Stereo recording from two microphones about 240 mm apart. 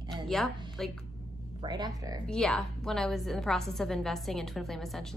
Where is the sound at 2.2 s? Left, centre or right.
Centre.